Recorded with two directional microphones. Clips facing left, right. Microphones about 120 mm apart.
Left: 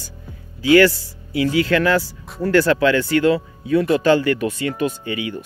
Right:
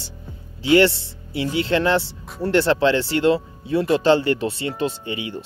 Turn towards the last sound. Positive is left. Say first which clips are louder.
# left 3 dB
turn(degrees=-25)  # may be behind; listen again after turning